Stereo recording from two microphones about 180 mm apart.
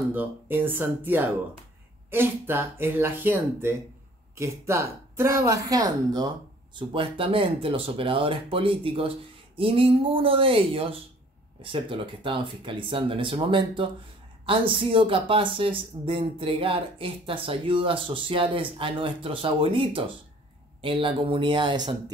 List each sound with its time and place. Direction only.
0.1 s speech: 10° right (ahead or behind)